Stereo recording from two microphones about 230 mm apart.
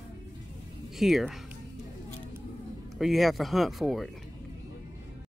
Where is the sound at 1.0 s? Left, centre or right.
Centre.